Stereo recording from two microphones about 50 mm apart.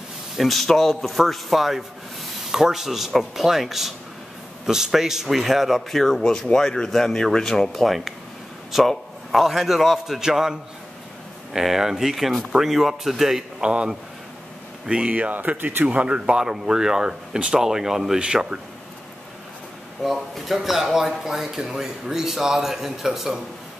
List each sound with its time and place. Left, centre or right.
0.4 s speech: centre
13.6 s a man's voice: right
14.9 s speech: right
20.0 s speech: centre